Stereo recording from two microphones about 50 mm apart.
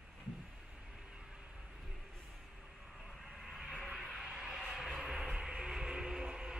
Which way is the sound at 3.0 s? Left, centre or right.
Centre.